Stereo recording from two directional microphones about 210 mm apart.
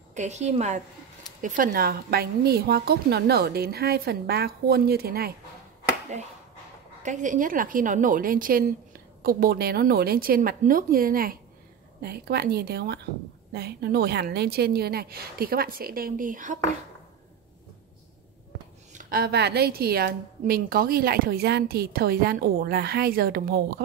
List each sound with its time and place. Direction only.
0.1 s a woman's voice: 35° right (ahead or behind)
7.0 s a woman's voice: 35° right (ahead or behind)
18.9 s a woman's voice: 45° right (ahead or behind)